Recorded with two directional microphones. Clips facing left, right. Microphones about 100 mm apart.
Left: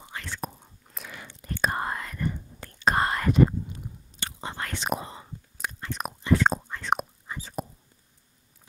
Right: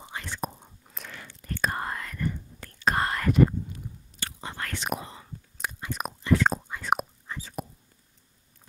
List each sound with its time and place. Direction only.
0.0 s whispering: 20° right (ahead or behind)
0.8 s whispering: 5° left (ahead or behind)
1.2 s whispering: 20° left (ahead or behind)
5.6 s biting: 5° right (ahead or behind)
6.2 s whispering: 25° left (ahead or behind)
6.7 s whispering: 5° right (ahead or behind)
7.3 s whispering: 10° left (ahead or behind)